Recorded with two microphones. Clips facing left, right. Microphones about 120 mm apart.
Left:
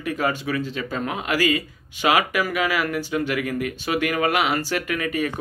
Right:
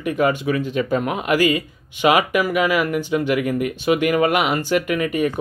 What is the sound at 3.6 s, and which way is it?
Speech, 40° left (ahead or behind).